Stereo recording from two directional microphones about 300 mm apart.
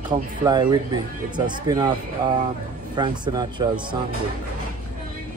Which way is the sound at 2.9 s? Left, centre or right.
Centre.